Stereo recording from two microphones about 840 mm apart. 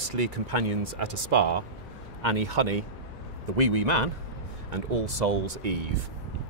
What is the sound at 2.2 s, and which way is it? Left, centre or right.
Speech, right.